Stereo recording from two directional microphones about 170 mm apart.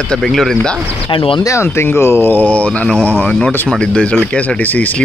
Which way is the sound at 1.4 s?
15° left (ahead or behind).